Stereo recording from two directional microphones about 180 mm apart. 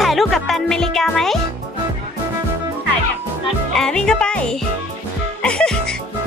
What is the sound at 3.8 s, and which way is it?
Speech, 5° left (ahead or behind).